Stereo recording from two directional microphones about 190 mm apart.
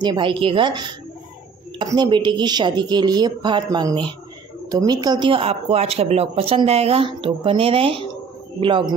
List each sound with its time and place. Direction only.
0.0 s speech: 25° right (ahead or behind)